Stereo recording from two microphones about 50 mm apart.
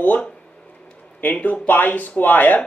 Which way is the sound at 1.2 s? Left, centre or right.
Left.